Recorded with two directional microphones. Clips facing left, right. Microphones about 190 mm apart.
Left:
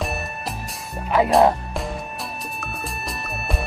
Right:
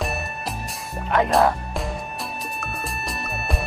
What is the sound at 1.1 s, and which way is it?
Speech, 5° left (ahead or behind).